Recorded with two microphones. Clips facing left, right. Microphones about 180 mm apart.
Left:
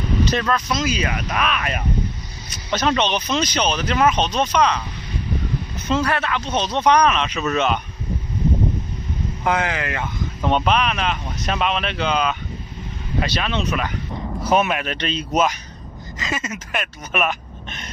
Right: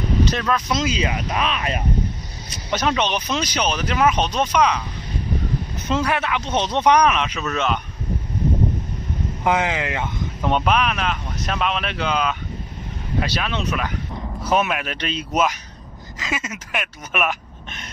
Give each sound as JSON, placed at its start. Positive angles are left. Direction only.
{"t": 0.3, "sound": "speech", "side_deg": 0}
{"t": 0.7, "sound": "speech", "side_deg": -20}
{"t": 2.9, "sound": "speech", "side_deg": -10}
{"t": 5.9, "sound": "speech", "side_deg": -15}
{"t": 7.3, "sound": "speech", "side_deg": 0}
{"t": 9.4, "sound": "speech", "side_deg": -20}
{"t": 10.5, "sound": "speech", "side_deg": -5}